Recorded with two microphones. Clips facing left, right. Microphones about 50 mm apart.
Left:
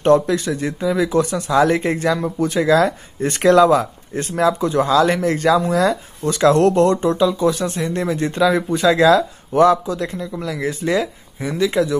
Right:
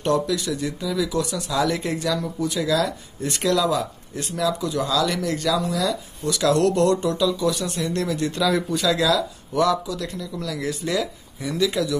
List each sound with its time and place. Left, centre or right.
0.0 s speech: left